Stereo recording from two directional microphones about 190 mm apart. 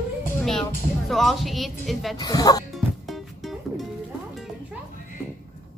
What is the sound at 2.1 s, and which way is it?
Speech, 20° left (ahead or behind).